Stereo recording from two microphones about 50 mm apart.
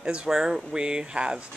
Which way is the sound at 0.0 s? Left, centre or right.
Centre.